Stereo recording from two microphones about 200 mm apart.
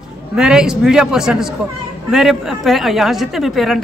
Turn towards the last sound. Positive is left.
turn(degrees=0)  # may be behind; listen again after turning